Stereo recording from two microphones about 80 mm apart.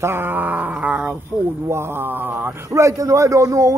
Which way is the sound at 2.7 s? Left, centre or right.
Right.